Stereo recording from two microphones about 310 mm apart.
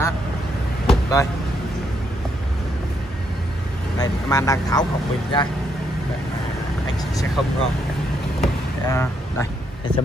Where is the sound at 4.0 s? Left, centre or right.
Centre.